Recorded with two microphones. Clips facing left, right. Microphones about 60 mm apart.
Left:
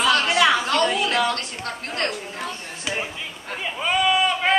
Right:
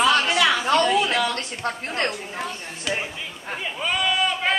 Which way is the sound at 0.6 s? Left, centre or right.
Centre.